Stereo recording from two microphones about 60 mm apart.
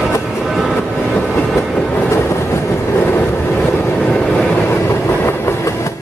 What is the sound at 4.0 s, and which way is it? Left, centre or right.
Vehicle, left.